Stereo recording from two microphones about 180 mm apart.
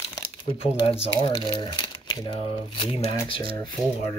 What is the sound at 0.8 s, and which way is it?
Speech, 30° left (ahead or behind).